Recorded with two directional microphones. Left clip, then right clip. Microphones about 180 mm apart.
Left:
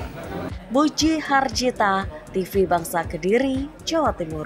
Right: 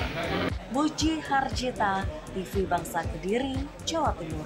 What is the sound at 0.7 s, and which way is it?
Speech, 30° left (ahead or behind).